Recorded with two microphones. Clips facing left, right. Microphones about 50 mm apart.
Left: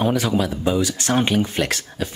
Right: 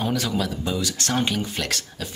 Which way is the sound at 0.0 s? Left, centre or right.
Centre.